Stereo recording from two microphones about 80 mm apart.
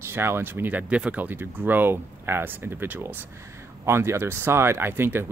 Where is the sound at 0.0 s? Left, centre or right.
Right.